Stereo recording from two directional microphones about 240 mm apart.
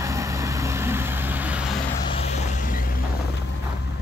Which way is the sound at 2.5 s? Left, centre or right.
Left.